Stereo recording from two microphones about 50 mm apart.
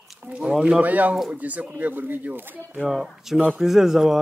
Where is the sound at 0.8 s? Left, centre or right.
Right.